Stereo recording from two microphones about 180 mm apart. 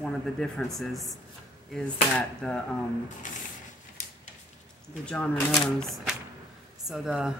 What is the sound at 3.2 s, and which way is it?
Speech, 45° left (ahead or behind).